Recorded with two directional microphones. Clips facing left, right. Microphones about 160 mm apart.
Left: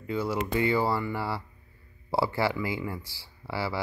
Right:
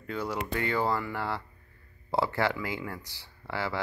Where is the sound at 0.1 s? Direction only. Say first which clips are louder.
Left 4 dB; 10° left (ahead or behind).